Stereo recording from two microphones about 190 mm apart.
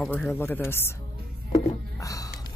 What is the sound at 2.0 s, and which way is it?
Music, 15° left (ahead or behind).